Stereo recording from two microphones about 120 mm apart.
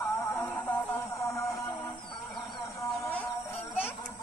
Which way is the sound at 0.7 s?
25° left (ahead or behind).